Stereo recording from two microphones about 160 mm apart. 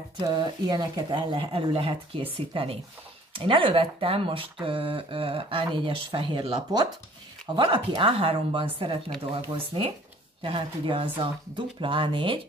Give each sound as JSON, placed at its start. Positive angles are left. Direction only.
{"t": 0.3, "sound": "speech", "side_deg": -25}